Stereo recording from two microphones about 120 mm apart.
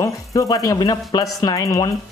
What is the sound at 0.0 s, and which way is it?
Speech, 30° left (ahead or behind).